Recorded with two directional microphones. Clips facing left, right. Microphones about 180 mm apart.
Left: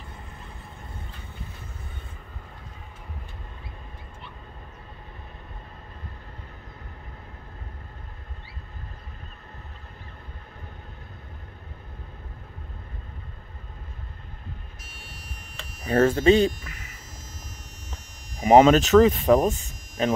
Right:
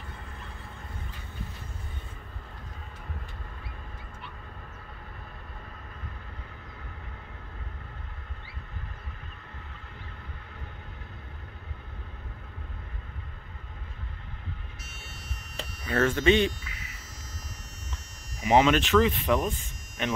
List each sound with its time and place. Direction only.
15.9 s speech: 35° left (ahead or behind)
18.4 s speech: 40° left (ahead or behind)